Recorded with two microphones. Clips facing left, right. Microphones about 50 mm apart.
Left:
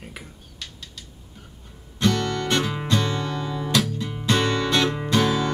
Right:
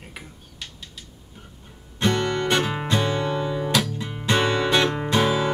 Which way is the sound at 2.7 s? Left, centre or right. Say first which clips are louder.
Right 1 dB; centre.